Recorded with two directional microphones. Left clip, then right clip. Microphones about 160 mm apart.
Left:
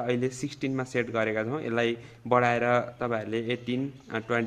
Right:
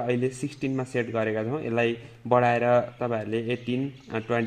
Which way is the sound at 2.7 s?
30° right (ahead or behind).